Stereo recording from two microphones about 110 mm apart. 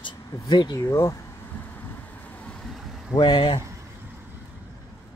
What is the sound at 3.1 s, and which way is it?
Speech, 45° left (ahead or behind).